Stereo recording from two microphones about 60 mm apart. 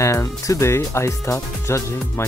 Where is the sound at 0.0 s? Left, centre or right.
Left.